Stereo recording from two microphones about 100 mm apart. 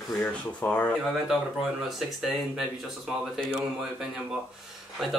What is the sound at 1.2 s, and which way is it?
A man's voice, 5° right (ahead or behind).